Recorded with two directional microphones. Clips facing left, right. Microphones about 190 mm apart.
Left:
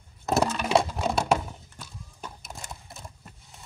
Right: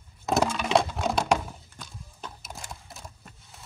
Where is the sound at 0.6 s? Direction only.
5° left (ahead or behind).